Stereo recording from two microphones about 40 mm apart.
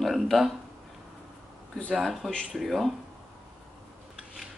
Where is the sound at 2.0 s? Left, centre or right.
Centre.